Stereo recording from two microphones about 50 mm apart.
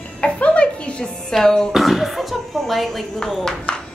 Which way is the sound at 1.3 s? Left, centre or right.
Centre.